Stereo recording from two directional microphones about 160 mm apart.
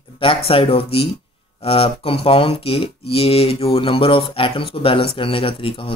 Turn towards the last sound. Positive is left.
turn(degrees=35)  # may be behind; listen again after turning